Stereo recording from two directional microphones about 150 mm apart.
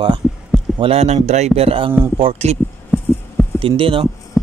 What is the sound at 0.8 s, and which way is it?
Speech, 45° right (ahead or behind).